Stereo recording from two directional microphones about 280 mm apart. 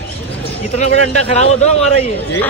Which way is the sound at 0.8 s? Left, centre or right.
Left.